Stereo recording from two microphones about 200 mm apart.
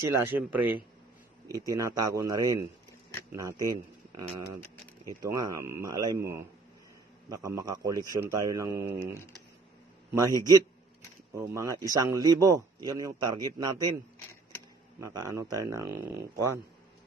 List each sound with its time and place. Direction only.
0.1 s a man's voice: 10° right (ahead or behind)
10.1 s a man's voice: 15° right (ahead or behind)
15.0 s a man's voice: 15° right (ahead or behind)